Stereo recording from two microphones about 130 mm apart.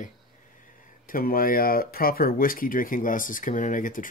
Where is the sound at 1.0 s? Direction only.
90° left.